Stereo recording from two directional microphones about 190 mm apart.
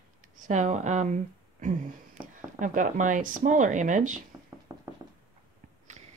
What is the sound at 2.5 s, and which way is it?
Speech, 40° right (ahead or behind).